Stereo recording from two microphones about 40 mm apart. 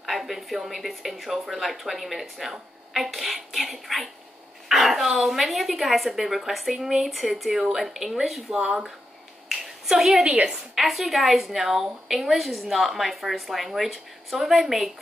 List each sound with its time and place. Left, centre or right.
0.0 s a woman's voice: centre
8.5 s speech: centre
9.8 s a woman's voice: centre